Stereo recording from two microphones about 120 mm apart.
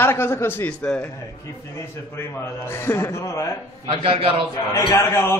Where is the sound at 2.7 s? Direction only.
20° left (ahead or behind).